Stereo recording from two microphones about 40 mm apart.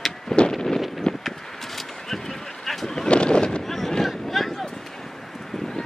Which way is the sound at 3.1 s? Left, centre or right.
Left.